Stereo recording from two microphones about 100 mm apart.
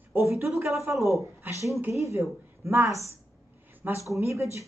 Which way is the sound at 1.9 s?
30° right (ahead or behind).